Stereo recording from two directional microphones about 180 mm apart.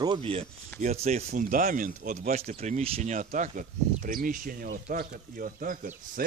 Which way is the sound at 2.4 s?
35° right (ahead or behind).